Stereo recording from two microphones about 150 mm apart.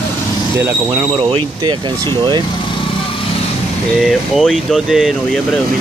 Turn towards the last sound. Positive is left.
turn(degrees=0)  # may be behind; listen again after turning